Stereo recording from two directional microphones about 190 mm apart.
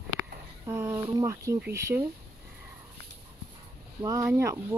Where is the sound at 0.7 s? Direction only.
15° right (ahead or behind).